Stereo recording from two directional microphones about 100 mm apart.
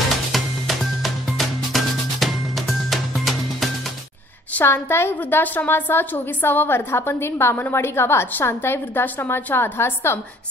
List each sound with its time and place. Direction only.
0.3 s music: centre (ahead or behind)
4.6 s a woman's voice: 20° left (ahead or behind)